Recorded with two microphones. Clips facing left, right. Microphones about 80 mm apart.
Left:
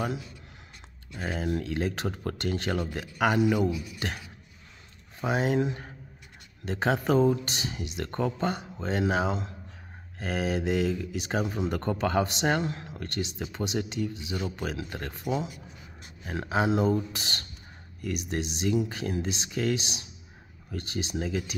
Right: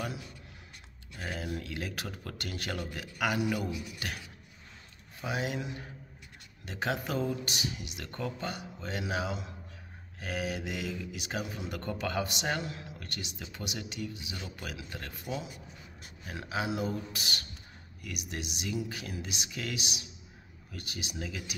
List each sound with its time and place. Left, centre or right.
1.1 s speech: left
3.7 s speech: right
5.2 s speech: left
16.3 s speech: left